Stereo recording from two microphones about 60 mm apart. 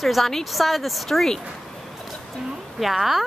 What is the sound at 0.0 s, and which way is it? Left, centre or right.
A woman's voice, centre.